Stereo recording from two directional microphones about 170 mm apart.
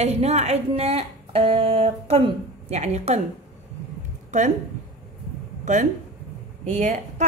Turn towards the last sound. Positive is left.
turn(degrees=-45)  # may be behind; listen again after turning